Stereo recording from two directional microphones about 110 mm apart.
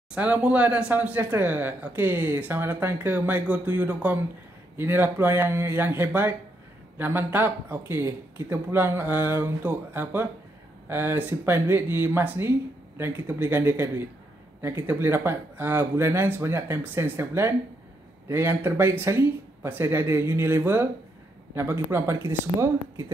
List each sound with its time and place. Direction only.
0.1 s speech: 10° right (ahead or behind)